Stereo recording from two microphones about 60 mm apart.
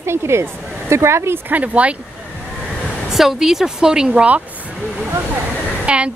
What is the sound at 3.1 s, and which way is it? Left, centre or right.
Speech, centre.